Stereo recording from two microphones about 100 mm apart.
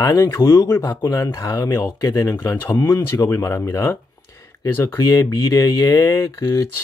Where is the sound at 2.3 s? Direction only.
20° left (ahead or behind).